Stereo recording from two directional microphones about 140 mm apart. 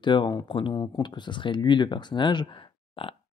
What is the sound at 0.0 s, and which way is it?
Speech, 35° left (ahead or behind).